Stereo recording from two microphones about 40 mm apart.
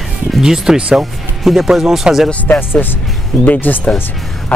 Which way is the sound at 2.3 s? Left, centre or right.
Left.